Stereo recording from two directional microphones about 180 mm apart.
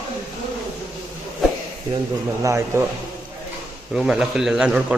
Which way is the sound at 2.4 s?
15° right (ahead or behind).